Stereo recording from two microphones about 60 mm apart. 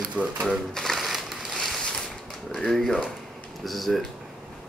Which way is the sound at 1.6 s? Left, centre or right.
Centre.